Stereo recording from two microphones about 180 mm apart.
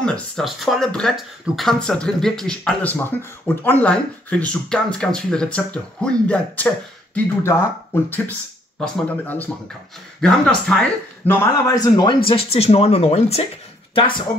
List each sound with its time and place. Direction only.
0.0 s speech: 5° left (ahead or behind); by 12.2 s 20° left (ahead or behind)
12.3 s speech: 30° left (ahead or behind)